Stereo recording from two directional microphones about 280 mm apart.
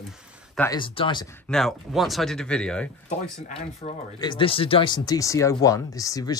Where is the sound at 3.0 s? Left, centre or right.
Left.